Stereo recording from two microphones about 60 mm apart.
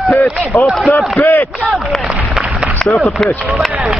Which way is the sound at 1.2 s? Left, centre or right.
Left.